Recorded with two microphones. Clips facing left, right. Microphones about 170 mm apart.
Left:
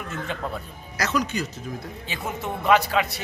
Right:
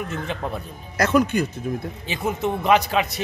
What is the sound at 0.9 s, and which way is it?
Speech, 55° right (ahead or behind).